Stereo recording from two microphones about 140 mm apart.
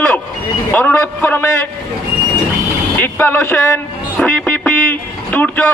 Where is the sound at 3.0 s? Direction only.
15° left (ahead or behind).